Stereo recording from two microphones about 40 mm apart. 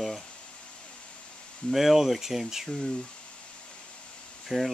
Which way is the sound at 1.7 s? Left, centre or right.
Centre.